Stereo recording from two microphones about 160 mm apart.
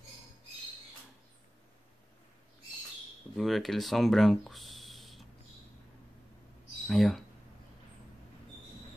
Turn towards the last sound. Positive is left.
turn(degrees=0)  # may be behind; listen again after turning